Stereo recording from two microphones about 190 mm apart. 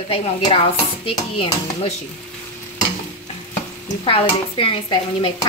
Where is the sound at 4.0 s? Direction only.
30° left (ahead or behind).